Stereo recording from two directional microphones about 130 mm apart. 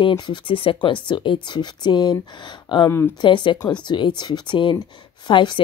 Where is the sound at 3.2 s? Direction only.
35° left (ahead or behind).